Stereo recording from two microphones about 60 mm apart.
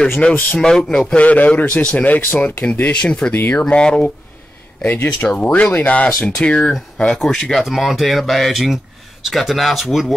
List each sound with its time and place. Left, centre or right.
0.0 s speech: centre
1.1 s a man's voice: left
4.8 s a man's voice: left; by 10.1 s centre